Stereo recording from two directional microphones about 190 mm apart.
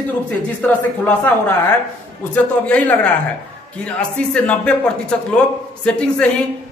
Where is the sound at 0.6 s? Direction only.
10° left (ahead or behind).